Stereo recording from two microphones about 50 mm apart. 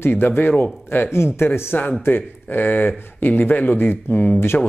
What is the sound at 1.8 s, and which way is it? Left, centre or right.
A man's voice, left.